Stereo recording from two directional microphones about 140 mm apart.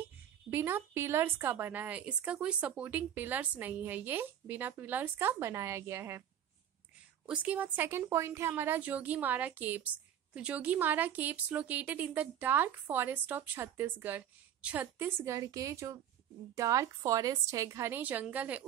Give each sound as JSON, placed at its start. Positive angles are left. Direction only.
{"t": 0.5, "sound": "speech", "side_deg": -15}
{"t": 7.2, "sound": "a woman's voice", "side_deg": -10}